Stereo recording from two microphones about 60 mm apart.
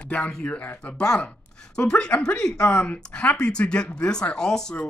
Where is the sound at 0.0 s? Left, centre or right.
Left.